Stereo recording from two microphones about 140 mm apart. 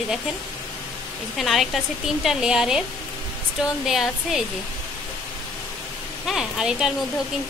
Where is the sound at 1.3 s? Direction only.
Centre (ahead or behind).